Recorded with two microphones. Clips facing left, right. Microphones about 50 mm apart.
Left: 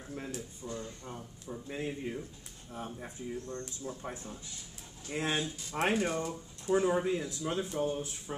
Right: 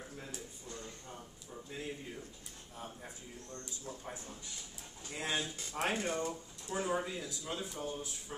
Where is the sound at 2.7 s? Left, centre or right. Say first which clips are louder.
Left 6 dB; left.